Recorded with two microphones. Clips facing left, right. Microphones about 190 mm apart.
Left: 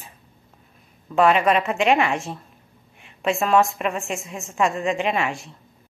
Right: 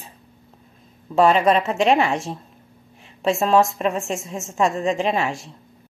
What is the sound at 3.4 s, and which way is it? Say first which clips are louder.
Speech: right 1 dB; 35° right (ahead or behind).